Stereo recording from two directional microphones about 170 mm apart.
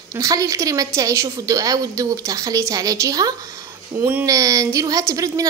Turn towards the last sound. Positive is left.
turn(degrees=-20)  # may be behind; listen again after turning